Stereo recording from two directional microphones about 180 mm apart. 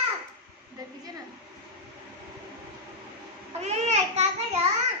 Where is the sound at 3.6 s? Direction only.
40° right (ahead or behind).